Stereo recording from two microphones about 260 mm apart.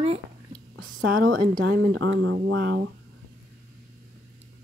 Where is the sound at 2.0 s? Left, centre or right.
Right.